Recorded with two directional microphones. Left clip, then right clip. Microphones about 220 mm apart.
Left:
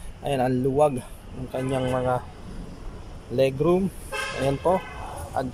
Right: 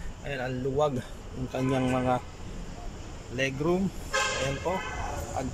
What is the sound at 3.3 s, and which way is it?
Speech, 15° left (ahead or behind).